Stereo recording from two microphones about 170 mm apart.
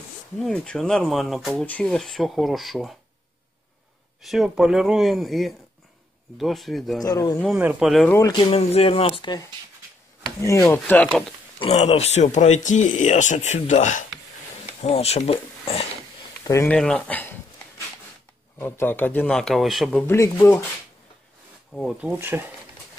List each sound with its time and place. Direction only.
0.4 s speech: 5° left (ahead or behind)
4.2 s speech: centre (ahead or behind)
7.0 s speech: 20° left (ahead or behind)
7.4 s speech: 5° right (ahead or behind)
8.3 s speech: 30° left (ahead or behind)
10.4 s a man's voice: 15° left (ahead or behind)
11.6 s speech: 35° left (ahead or behind)
16.6 s speech: 5° left (ahead or behind)
18.6 s a man's voice: 10° left (ahead or behind)
20.1 s a man's voice: 15° left (ahead or behind)
21.7 s speech: centre (ahead or behind)
22.2 s speech: 10° right (ahead or behind)